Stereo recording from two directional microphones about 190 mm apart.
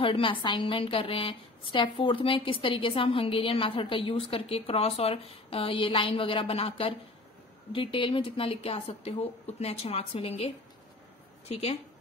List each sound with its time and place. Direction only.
0.0 s a woman's voice: 25° left (ahead or behind)